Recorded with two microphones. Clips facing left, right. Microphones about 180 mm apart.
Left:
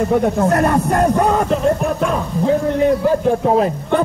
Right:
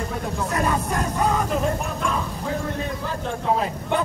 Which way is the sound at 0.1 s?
60° left (ahead or behind).